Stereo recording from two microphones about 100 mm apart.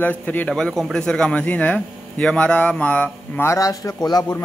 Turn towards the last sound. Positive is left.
turn(degrees=40)  # may be behind; listen again after turning